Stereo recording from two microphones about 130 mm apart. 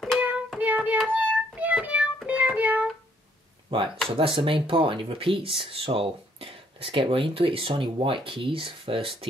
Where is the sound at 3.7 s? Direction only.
40° right (ahead or behind).